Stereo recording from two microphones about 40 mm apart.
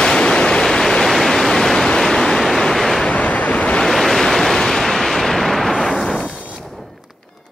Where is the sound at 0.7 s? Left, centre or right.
Centre.